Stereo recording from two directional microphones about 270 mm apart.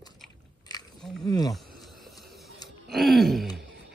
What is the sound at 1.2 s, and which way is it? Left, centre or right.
Wild animals, centre.